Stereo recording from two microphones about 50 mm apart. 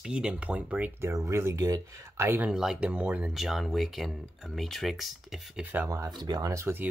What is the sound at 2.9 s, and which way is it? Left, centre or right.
Speech, right.